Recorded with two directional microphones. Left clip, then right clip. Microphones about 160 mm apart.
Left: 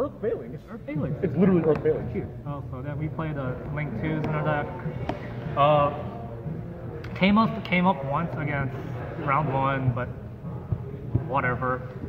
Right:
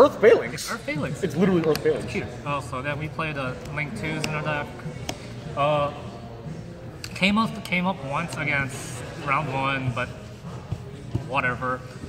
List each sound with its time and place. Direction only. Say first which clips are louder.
0.0 s speech: right 13 dB; 50° right (ahead or behind)
0.8 s a man's voice: even; centre (ahead or behind)
1.2 s speech: even; 55° right (ahead or behind)
2.1 s a man's voice: right 6 dB; 5° right (ahead or behind)
7.2 s a man's voice: even; centre (ahead or behind)
11.3 s a man's voice: right 1 dB; 5° right (ahead or behind)